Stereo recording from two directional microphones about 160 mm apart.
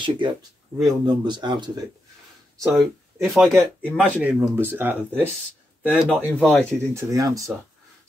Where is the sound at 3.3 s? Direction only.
5° right (ahead or behind).